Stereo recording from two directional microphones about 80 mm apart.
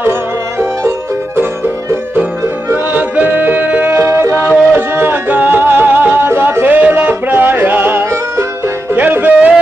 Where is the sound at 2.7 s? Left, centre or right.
Right.